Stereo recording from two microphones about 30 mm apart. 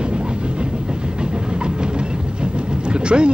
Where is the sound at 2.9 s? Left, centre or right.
Right.